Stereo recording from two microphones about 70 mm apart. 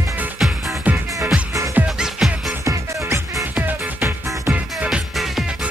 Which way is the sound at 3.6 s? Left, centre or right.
Right.